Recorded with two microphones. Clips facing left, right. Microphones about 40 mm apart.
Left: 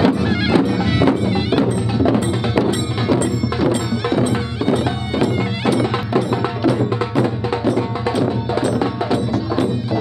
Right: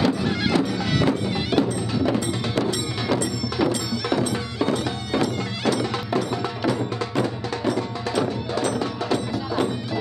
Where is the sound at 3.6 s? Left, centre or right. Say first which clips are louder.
Left 5 dB; left.